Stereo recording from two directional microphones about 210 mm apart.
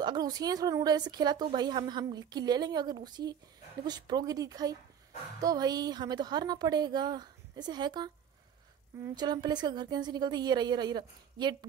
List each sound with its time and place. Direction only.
0.0 s speech: 20° right (ahead or behind)